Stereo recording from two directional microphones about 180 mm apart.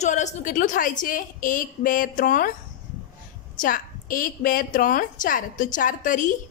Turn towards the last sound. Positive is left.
turn(degrees=45)  # may be behind; listen again after turning